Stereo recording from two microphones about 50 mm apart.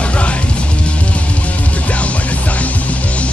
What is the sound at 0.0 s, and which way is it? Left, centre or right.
Music, left.